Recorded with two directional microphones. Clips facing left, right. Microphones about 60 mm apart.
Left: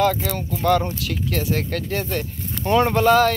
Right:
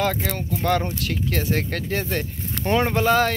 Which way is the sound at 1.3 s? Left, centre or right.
Right.